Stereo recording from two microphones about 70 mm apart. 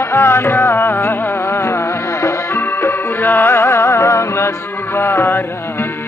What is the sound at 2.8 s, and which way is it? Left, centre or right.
Music, left.